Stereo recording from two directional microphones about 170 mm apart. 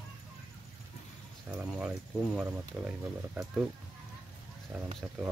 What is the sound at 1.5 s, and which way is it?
Speech, 10° right (ahead or behind).